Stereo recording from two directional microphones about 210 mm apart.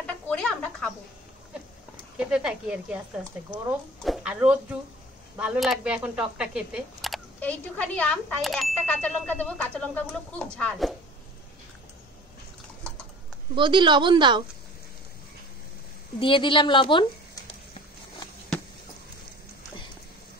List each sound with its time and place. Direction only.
0.0 s a sound: 5° left (ahead or behind)
2.1 s speech: 5° right (ahead or behind)
4.0 s speech: 5° right (ahead or behind)
13.6 s a woman's voice: 20° right (ahead or behind)
16.2 s a woman's voice: 25° left (ahead or behind)